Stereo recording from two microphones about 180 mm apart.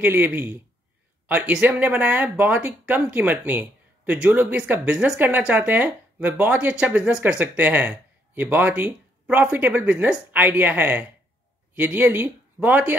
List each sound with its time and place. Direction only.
0.0 s speech: 10° right (ahead or behind)